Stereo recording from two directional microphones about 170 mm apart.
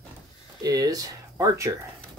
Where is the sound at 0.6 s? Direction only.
20° right (ahead or behind).